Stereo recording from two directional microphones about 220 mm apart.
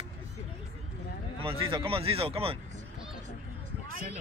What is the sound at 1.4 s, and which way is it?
Speech, 25° right (ahead or behind).